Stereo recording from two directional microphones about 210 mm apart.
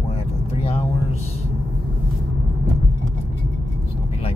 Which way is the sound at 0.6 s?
30° left (ahead or behind).